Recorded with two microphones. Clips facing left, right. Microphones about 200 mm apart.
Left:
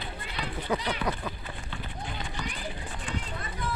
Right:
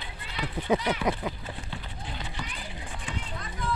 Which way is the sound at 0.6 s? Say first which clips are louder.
Right 4 dB; 20° right (ahead or behind).